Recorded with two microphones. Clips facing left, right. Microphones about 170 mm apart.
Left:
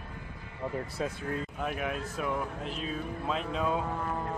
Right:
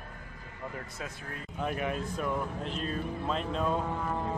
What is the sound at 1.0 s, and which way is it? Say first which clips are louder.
Speech: left 8 dB; 30° left (ahead or behind).